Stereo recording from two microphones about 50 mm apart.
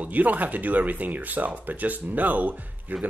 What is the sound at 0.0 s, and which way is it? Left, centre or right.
Speech, right.